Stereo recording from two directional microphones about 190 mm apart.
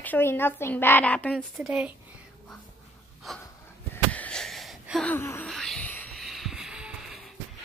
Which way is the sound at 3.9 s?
10° left (ahead or behind).